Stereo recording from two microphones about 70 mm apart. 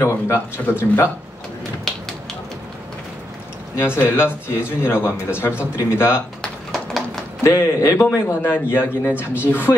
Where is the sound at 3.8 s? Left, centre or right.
Left.